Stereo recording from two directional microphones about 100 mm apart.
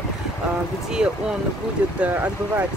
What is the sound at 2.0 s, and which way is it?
Speech, 20° right (ahead or behind).